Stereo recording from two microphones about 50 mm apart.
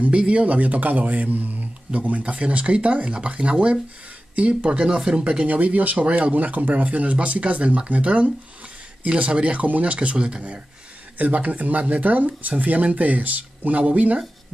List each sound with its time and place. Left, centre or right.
0.0 s speech: right
5.5 s speech: right
10.1 s speech: centre
11.1 s speech: right